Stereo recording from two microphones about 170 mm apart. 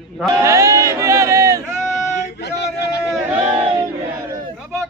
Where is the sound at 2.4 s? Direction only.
80° left.